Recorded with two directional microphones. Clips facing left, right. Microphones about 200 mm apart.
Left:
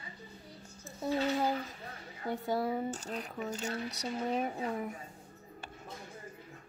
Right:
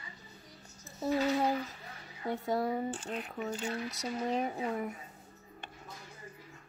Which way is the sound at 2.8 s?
40° left (ahead or behind).